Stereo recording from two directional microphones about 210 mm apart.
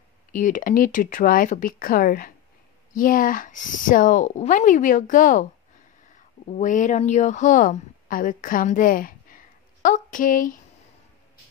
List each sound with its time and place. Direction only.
0.3 s speech: 40° left (ahead or behind)